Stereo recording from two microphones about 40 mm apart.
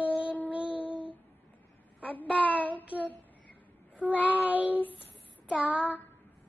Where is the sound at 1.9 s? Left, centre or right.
Left.